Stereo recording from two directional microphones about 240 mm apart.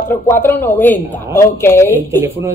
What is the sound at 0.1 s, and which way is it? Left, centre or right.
Speech, centre.